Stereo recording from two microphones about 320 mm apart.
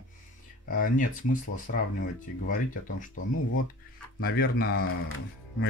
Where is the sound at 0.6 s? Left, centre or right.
Left.